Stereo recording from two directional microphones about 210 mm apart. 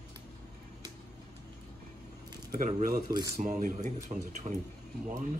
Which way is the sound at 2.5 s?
40° right (ahead or behind).